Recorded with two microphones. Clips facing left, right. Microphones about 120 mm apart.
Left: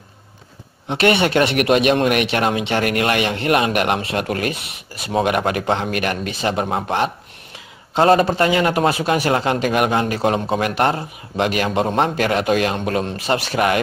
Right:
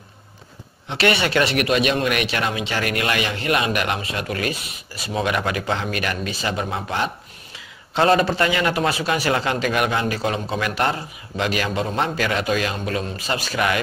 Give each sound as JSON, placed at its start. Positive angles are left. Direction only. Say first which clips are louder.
{"t": 0.8, "sound": "a man's voice", "louder": "left 4 dB", "side_deg": 50}